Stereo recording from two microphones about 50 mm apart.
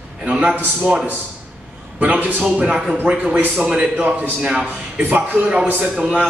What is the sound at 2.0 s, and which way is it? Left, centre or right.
Speech, right.